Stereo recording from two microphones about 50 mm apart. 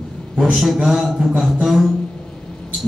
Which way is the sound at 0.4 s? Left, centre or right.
Centre.